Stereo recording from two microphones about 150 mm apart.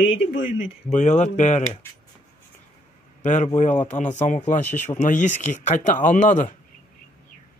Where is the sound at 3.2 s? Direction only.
55° left (ahead or behind).